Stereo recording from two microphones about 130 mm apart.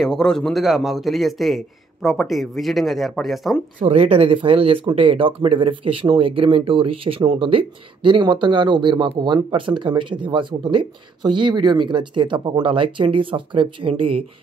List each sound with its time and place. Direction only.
0.0 s a man's voice: 5° left (ahead or behind)
3.8 s speech: 50° right (ahead or behind)